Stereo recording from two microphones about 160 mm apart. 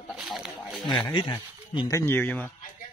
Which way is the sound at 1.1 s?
30° left (ahead or behind).